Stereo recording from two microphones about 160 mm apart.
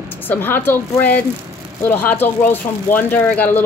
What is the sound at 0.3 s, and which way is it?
Speech, 10° left (ahead or behind).